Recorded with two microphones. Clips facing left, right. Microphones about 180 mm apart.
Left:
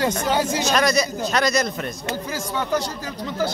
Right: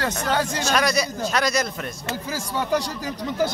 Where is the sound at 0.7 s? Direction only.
10° right (ahead or behind).